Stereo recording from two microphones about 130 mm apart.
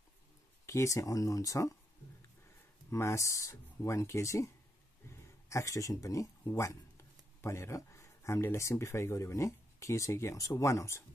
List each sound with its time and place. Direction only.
0.7 s speech: 25° left (ahead or behind)
2.9 s speech: 20° left (ahead or behind)
5.5 s speech: 25° left (ahead or behind)